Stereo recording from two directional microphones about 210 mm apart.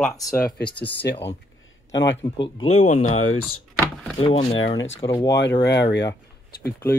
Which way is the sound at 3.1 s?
90° left.